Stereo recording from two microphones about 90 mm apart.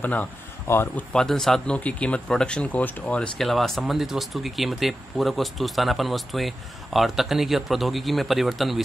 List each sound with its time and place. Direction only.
0.0 s speech: 15° left (ahead or behind)
1.1 s speech: 5° left (ahead or behind)
3.3 s speech: centre (ahead or behind)